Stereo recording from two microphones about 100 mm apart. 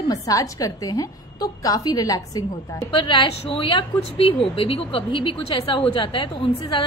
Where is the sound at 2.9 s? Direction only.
50° left (ahead or behind).